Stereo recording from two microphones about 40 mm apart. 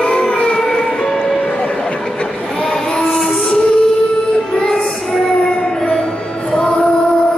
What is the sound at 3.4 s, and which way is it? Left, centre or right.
Music, left.